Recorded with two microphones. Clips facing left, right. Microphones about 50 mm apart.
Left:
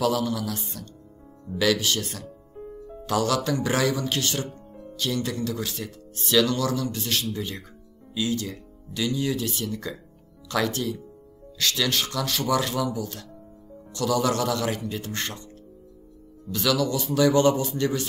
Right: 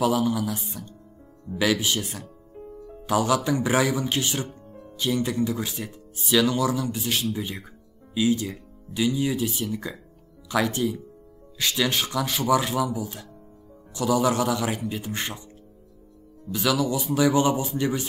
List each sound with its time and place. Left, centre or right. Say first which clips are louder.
0.0 s speech: right 2 dB; centre
16.5 s speech: even; centre